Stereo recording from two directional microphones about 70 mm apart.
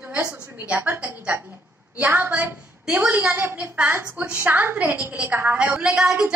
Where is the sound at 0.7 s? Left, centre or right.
Right.